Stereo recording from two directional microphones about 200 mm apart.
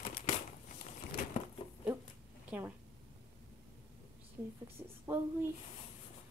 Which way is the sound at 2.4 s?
10° right (ahead or behind).